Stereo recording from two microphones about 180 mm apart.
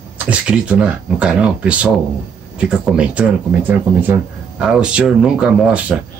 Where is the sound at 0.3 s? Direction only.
5° right (ahead or behind).